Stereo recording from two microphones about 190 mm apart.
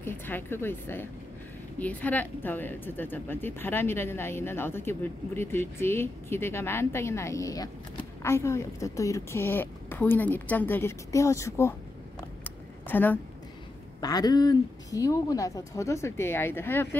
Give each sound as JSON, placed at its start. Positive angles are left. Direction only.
{"t": 0.0, "sound": "speech", "side_deg": 10}
{"t": 12.4, "sound": "a sound", "side_deg": 10}
{"t": 14.0, "sound": "speech", "side_deg": 20}